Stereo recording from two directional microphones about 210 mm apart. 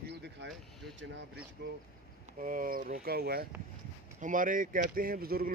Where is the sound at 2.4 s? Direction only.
40° right (ahead or behind).